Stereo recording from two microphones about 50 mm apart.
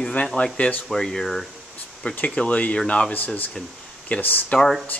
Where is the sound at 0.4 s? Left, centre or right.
Left.